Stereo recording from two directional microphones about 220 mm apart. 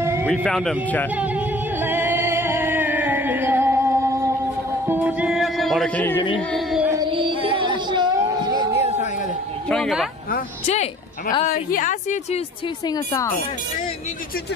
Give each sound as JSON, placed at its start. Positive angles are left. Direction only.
{"t": 0.0, "sound": "a sound", "side_deg": -10}
{"t": 0.3, "sound": "speech", "side_deg": 5}
{"t": 1.1, "sound": "music", "side_deg": -5}
{"t": 6.5, "sound": "speech", "side_deg": 0}
{"t": 6.9, "sound": "music", "side_deg": -20}
{"t": 9.7, "sound": "speech", "side_deg": 0}
{"t": 10.3, "sound": "a woman's voice", "side_deg": 35}
{"t": 12.8, "sound": "speech", "side_deg": 15}